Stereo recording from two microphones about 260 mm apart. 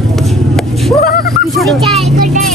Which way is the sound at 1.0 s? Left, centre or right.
Left.